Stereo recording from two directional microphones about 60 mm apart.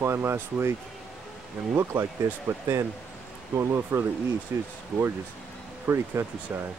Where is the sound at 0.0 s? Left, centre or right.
Right.